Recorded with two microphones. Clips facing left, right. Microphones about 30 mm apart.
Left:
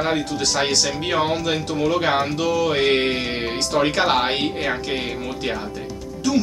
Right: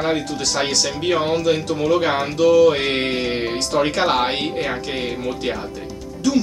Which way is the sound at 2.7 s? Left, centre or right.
Centre.